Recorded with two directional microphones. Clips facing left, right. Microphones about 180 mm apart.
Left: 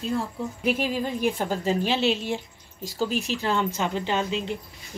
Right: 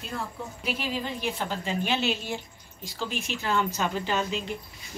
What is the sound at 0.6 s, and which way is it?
A woman's voice, 50° left (ahead or behind).